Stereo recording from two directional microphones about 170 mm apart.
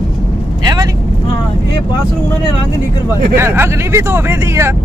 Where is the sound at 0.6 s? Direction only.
25° right (ahead or behind).